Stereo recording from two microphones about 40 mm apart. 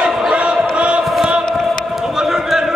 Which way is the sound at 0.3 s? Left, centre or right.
Right.